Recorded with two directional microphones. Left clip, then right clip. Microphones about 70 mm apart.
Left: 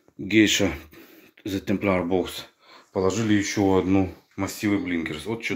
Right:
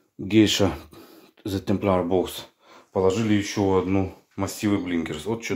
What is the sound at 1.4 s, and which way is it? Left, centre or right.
Speech, right.